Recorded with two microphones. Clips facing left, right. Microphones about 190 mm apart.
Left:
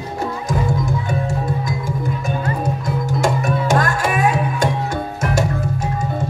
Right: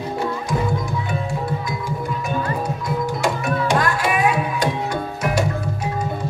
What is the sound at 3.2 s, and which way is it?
Music, 45° left (ahead or behind).